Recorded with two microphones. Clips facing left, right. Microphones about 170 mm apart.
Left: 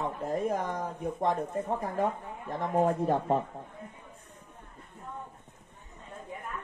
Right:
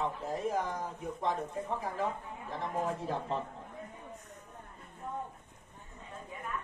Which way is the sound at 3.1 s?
50° left (ahead or behind).